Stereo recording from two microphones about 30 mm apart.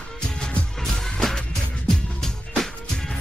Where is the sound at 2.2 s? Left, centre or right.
Centre.